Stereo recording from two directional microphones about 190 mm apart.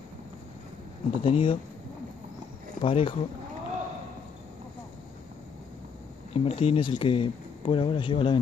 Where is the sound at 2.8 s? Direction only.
30° left (ahead or behind).